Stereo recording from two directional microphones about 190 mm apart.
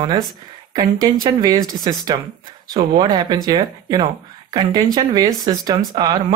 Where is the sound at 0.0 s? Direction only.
20° right (ahead or behind).